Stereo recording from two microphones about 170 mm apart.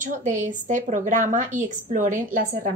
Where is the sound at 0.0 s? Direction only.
50° right (ahead or behind).